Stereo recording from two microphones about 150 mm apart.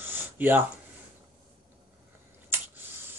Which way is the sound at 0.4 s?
15° right (ahead or behind).